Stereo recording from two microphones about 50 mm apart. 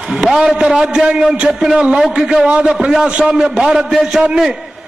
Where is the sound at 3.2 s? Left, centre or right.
Centre.